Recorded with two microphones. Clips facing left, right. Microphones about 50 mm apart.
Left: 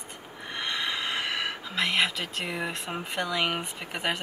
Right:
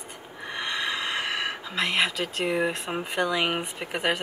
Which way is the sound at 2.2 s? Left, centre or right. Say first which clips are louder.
Right 6 dB; centre.